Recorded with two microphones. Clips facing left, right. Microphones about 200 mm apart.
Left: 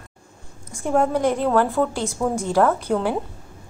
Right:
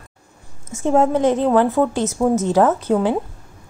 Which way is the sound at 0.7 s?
25° right (ahead or behind).